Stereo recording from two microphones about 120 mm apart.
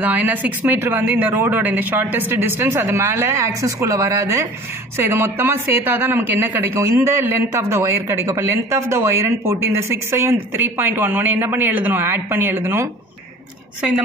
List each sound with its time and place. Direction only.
0.0 s speech: 15° right (ahead or behind)